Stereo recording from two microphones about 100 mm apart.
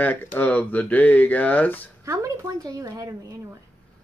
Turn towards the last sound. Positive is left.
turn(degrees=-35)  # may be behind; listen again after turning